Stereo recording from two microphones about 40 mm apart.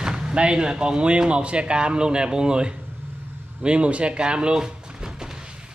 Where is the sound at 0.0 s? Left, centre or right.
Right.